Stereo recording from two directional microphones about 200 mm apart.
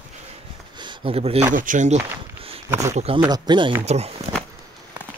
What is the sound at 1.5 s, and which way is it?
Speech, 40° right (ahead or behind).